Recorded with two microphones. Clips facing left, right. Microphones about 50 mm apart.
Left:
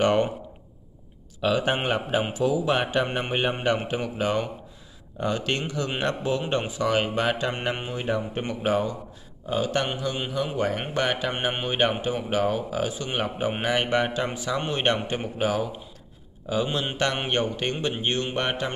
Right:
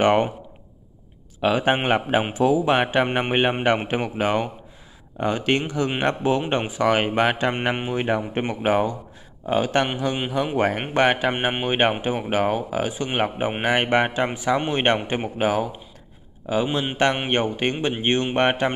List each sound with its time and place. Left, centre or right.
0.0 s a man's voice: right
1.4 s a man's voice: right
9.5 s a man's voice: right